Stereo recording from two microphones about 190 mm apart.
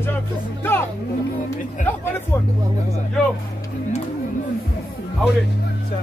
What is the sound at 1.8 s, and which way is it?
Speech, 40° left (ahead or behind).